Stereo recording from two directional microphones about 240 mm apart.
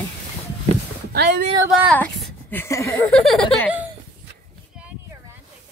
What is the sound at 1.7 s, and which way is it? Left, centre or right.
A woman's voice, centre.